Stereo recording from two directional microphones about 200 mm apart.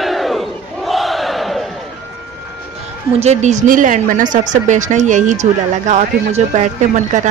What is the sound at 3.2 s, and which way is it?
Speech, 35° right (ahead or behind).